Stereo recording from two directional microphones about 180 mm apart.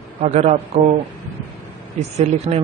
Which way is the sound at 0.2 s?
40° right (ahead or behind).